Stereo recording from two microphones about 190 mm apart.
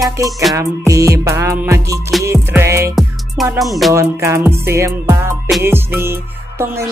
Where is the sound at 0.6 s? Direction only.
15° right (ahead or behind).